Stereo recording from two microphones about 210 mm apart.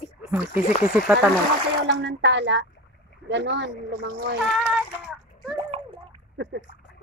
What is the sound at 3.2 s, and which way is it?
Speech, 55° right (ahead or behind).